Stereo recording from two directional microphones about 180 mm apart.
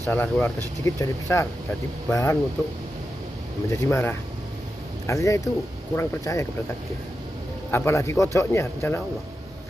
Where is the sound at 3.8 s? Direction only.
15° left (ahead or behind).